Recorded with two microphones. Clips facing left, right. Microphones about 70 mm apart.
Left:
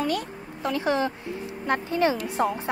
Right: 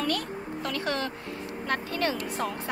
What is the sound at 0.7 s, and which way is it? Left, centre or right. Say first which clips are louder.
Speech: left 7 dB; centre.